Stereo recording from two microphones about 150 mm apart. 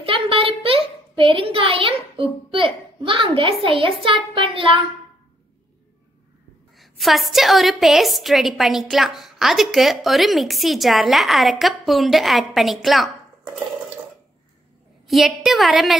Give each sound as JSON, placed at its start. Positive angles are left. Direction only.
{"t": 0.0, "sound": "a child's voice", "side_deg": -35}
{"t": 6.8, "sound": "a woman's voice", "side_deg": 0}
{"t": 15.0, "sound": "a woman's voice", "side_deg": 0}